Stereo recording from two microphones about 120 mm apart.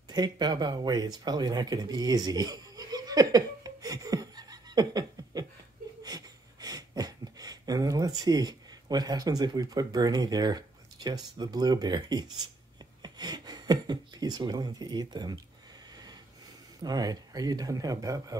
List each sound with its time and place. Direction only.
0.1 s a sound: 35° right (ahead or behind)
13.0 s speech: 35° right (ahead or behind)
16.8 s speech: 35° right (ahead or behind)